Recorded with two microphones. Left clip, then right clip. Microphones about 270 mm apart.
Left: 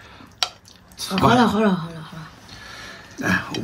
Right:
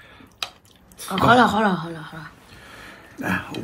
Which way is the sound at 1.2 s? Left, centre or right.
Centre.